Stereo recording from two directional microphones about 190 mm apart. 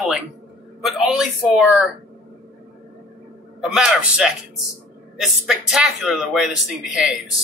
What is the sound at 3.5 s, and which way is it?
Speech, 5° right (ahead or behind).